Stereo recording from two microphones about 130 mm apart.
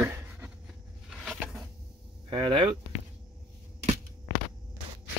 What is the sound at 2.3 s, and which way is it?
Speech, 40° right (ahead or behind).